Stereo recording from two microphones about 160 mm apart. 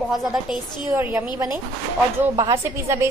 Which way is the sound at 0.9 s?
15° right (ahead or behind).